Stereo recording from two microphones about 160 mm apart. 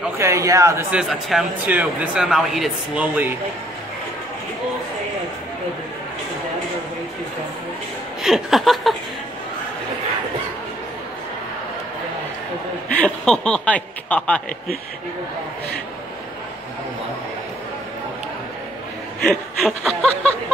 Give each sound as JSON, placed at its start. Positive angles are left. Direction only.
{"t": 0.2, "sound": "speech", "side_deg": -20}
{"t": 0.9, "sound": "a man's voice", "side_deg": -5}
{"t": 8.2, "sound": "a man's voice", "side_deg": 0}
{"t": 12.8, "sound": "speech", "side_deg": 5}
{"t": 19.2, "sound": "a man's voice", "side_deg": 0}